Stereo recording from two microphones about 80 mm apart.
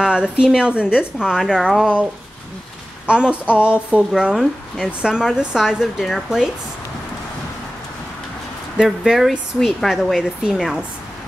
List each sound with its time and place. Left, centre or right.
0.0 s speech: centre
3.1 s speech: centre
8.7 s speech: centre